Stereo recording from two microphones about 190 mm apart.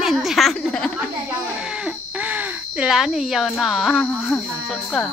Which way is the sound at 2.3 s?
5° right (ahead or behind).